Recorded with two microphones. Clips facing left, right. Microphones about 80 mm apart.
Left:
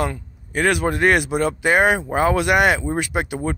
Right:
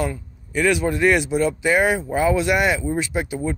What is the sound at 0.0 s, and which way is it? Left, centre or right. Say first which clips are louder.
Speech: left 1 dB; left.